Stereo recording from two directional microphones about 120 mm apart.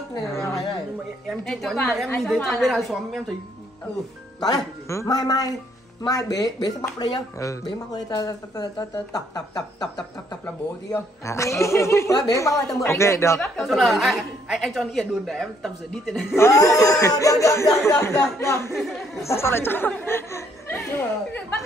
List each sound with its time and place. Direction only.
1.4 s a woman's voice: 5° left (ahead or behind)
4.4 s speech: 30° left (ahead or behind)
13.6 s a woman's voice: centre (ahead or behind)
16.3 s speech: 25° left (ahead or behind)